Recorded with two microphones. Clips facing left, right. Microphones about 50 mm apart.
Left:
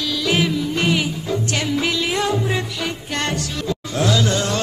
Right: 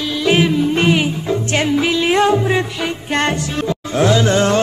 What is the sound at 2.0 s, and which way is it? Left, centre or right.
Music, right.